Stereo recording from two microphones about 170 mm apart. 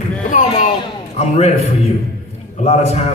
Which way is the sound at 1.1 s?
40° left (ahead or behind).